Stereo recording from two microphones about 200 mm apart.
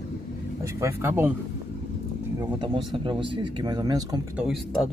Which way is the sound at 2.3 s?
25° right (ahead or behind).